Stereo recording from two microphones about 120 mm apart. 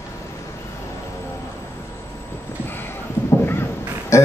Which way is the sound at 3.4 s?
20° left (ahead or behind).